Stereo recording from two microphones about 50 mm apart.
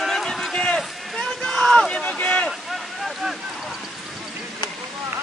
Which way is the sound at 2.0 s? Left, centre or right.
Left.